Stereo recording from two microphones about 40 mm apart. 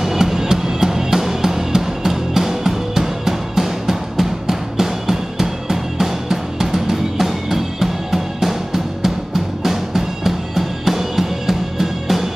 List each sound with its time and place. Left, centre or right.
0.0 s music: centre